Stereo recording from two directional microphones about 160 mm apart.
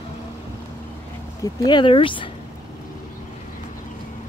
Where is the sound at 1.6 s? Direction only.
30° left (ahead or behind).